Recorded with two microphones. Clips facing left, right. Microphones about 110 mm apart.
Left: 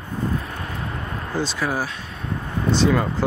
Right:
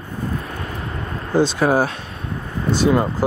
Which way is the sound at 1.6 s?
55° right (ahead or behind).